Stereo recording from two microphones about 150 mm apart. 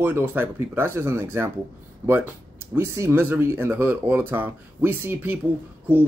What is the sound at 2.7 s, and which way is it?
Speech, 15° right (ahead or behind).